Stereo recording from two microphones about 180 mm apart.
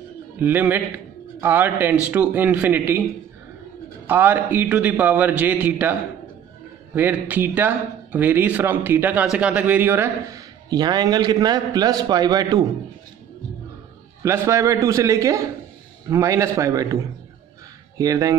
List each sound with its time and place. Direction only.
0.4 s a man's voice: 10° right (ahead or behind)
4.1 s a man's voice: 10° right (ahead or behind)
7.0 s a man's voice: 10° right (ahead or behind)
14.2 s a man's voice: 15° right (ahead or behind)